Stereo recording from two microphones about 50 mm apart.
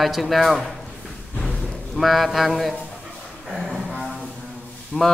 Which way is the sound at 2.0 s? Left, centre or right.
Centre.